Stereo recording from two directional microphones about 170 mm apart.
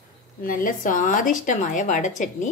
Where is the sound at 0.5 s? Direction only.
55° left (ahead or behind).